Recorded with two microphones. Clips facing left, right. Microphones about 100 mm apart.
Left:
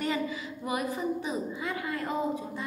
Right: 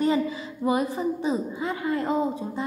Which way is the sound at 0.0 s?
30° right (ahead or behind).